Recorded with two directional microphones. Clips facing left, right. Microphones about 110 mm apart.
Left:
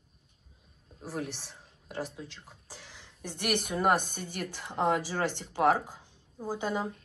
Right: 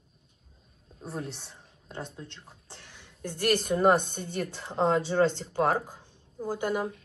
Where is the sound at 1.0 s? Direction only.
Centre (ahead or behind).